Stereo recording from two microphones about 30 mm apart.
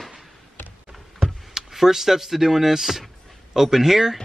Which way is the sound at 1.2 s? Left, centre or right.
Centre.